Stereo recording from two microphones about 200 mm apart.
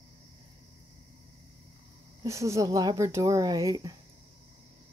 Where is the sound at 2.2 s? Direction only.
15° right (ahead or behind).